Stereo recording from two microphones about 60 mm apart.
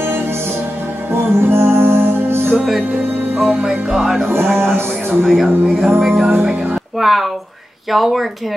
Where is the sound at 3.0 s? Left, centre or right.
Right.